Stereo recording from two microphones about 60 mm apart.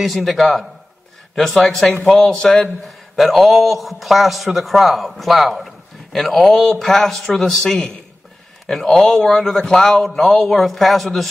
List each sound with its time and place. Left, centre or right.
0.0 s a man's voice: centre